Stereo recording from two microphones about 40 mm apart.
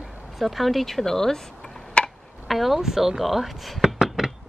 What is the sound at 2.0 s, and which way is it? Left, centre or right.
Tick-tock, left.